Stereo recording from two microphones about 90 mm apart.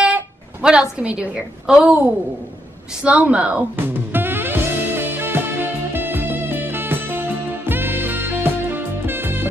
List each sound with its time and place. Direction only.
0.0 s a sound: 15° right (ahead or behind)
0.9 s a woman's voice: 10° right (ahead or behind)
3.0 s music: 15° right (ahead or behind)